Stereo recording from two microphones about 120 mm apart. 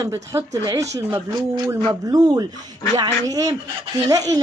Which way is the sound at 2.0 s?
30° right (ahead or behind).